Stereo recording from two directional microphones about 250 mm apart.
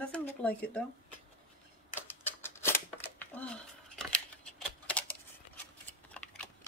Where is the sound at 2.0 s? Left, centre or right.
Centre.